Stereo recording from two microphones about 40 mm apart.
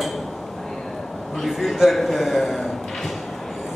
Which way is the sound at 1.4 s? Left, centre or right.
Centre.